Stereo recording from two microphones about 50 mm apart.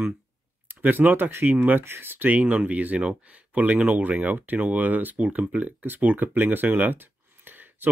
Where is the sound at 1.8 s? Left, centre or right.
Right.